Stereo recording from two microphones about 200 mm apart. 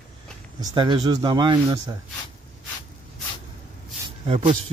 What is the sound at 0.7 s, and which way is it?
A man's voice, 20° right (ahead or behind).